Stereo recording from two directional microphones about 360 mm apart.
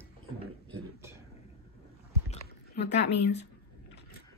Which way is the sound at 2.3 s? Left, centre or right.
Left.